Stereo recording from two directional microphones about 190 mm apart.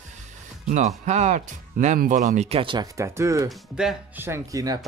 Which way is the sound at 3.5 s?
5° right (ahead or behind).